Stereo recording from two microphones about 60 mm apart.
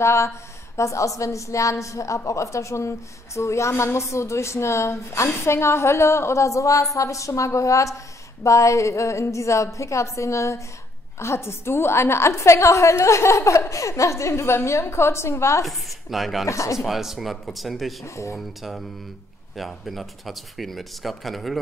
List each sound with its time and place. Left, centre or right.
0.0 s a woman's voice: left
15.6 s speech: centre
16.4 s a woman's voice: left
16.7 s speech: centre
18.0 s a woman's voice: left
18.3 s speech: centre